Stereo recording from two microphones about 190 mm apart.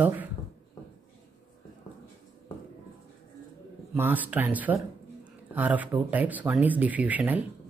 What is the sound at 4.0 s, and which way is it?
Speech, 10° right (ahead or behind).